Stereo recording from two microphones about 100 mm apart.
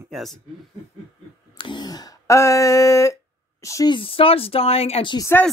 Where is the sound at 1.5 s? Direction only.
55° left (ahead or behind); by 3.9 s 30° left (ahead or behind).